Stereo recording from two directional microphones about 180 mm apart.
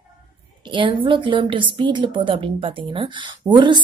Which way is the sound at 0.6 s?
25° right (ahead or behind).